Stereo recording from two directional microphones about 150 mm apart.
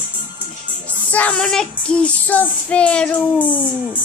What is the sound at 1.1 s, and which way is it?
Child singing, 10° left (ahead or behind).